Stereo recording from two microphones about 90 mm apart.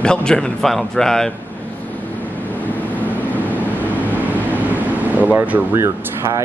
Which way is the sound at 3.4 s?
20° right (ahead or behind).